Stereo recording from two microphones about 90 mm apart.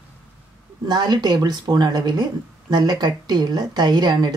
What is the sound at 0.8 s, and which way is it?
Speech, 50° right (ahead or behind).